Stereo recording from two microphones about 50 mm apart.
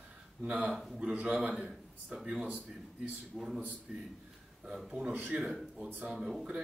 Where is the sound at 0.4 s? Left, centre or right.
Right.